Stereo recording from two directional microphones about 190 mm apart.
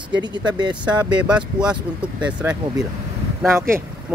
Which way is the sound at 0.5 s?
20° right (ahead or behind).